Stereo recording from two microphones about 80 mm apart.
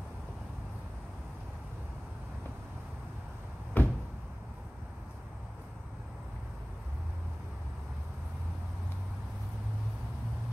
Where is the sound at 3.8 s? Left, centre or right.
Left.